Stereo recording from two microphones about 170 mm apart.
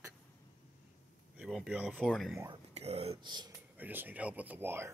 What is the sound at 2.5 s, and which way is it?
Speech, 40° right (ahead or behind).